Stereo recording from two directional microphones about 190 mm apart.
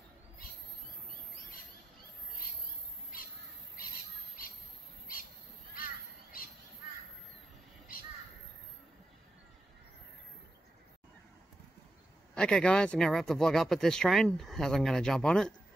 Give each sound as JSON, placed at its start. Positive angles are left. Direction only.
{"t": 3.1, "sound": "crow", "side_deg": 50}
{"t": 7.9, "sound": "crow", "side_deg": 50}
{"t": 12.4, "sound": "speech", "side_deg": 5}